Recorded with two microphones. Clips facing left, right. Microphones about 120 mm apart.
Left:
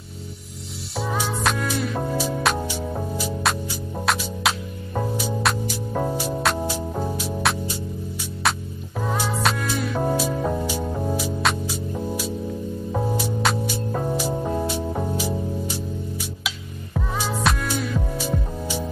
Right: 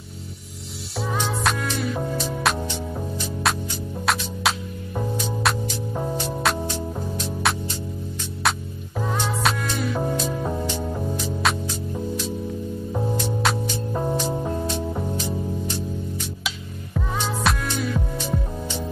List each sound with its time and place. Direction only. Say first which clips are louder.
0.9 s music: even; 5° left (ahead or behind)
9.1 s music: left 1 dB; 5° left (ahead or behind)
13.2 s music: even; 5° left (ahead or behind)